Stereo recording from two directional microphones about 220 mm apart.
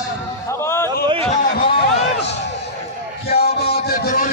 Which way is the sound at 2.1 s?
50° left (ahead or behind).